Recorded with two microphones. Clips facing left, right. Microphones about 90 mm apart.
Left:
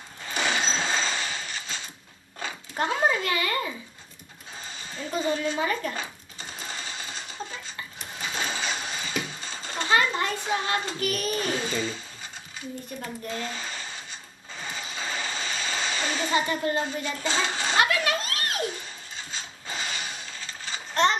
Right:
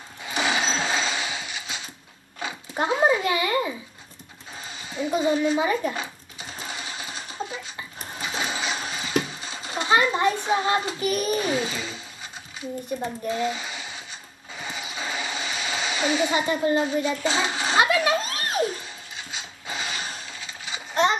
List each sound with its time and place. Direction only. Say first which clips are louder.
0.2 s sewing machine: right 2 dB; 10° right (ahead or behind)
2.4 s a child's voice: right 2 dB; 15° right (ahead or behind)
4.8 s speech: right 5 dB; 15° right (ahead or behind)
6.7 s a sound: right 2 dB; 10° right (ahead or behind)
8.2 s sewing machine: right 2 dB; 10° right (ahead or behind)
11.0 s speech: right 4 dB; 20° right (ahead or behind)
13.0 s speech: right 7 dB; 15° right (ahead or behind)
14.6 s vehicle: right 2 dB; 10° right (ahead or behind)
17.3 s a sound: right 2 dB; 15° right (ahead or behind)
19.3 s a sound: right 2 dB; 10° right (ahead or behind)